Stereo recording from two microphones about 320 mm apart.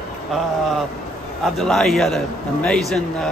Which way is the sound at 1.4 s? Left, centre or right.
Centre.